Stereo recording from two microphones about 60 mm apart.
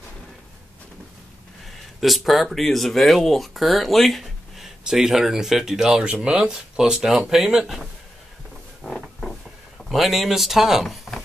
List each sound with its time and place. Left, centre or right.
2.0 s speech: centre
8.8 s a sound: centre
9.8 s speech: centre